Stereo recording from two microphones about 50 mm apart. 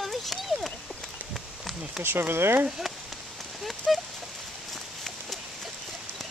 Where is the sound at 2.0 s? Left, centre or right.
Right.